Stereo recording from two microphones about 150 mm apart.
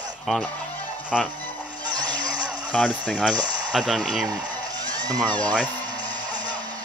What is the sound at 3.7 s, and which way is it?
Speech, centre (ahead or behind).